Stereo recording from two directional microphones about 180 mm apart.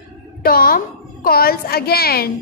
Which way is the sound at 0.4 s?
55° left (ahead or behind).